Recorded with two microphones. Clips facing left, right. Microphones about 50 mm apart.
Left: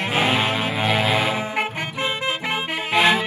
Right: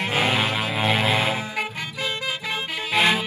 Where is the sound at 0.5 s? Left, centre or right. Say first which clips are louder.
Left 1 dB; centre.